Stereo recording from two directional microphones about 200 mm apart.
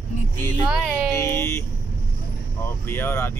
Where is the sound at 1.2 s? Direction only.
15° left (ahead or behind).